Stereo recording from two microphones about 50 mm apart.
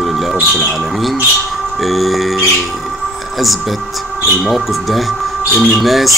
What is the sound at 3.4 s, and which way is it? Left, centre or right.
Speech, centre.